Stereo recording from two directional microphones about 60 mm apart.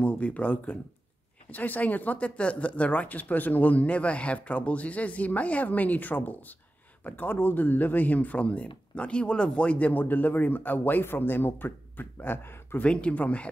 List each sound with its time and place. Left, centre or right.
0.0 s speech: left
12.8 s speech: centre